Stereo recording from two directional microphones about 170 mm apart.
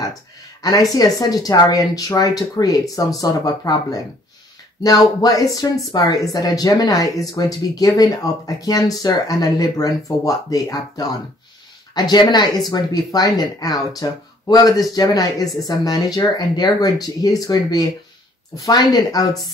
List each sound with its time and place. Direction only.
0.6 s speech: 20° left (ahead or behind)